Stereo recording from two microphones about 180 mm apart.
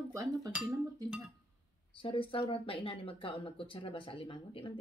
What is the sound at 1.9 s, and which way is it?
Speech, 30° left (ahead or behind).